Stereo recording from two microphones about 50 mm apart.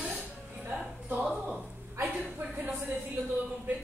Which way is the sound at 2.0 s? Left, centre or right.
Right.